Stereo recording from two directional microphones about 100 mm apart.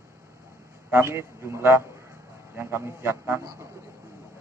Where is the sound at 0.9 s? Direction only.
25° right (ahead or behind).